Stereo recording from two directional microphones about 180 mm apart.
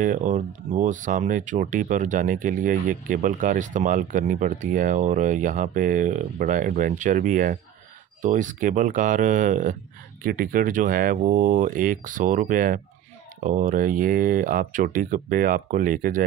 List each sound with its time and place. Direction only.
0.0 s speech: 45° right (ahead or behind)